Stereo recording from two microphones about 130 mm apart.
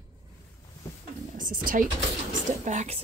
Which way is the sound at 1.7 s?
90° right.